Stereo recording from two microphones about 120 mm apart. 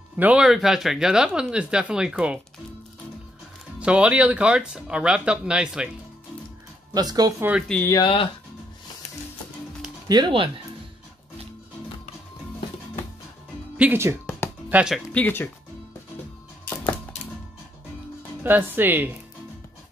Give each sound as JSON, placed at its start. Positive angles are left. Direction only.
{"t": 0.2, "sound": "speech", "side_deg": -10}
{"t": 3.8, "sound": "speech", "side_deg": -10}
{"t": 6.9, "sound": "speech", "side_deg": -30}
{"t": 7.9, "sound": "speech", "side_deg": 40}
{"t": 10.0, "sound": "speech", "side_deg": -35}
{"t": 13.7, "sound": "speech", "side_deg": -15}
{"t": 15.1, "sound": "speech", "side_deg": 15}
{"t": 18.4, "sound": "speech", "side_deg": -15}